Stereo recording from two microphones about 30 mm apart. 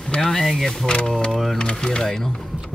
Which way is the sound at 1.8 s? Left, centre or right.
Left.